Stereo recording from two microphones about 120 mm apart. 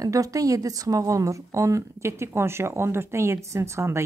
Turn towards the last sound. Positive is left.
turn(degrees=-20)  # may be behind; listen again after turning